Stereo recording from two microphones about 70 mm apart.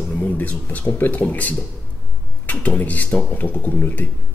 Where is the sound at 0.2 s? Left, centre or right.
Left.